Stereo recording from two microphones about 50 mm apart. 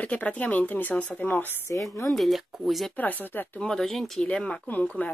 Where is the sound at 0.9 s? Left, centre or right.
Left.